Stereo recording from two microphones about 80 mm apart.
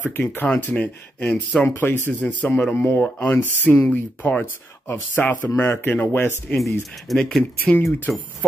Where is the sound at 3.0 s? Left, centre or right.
Left.